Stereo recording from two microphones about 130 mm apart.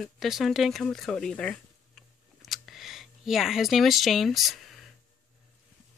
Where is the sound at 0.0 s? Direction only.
Centre (ahead or behind).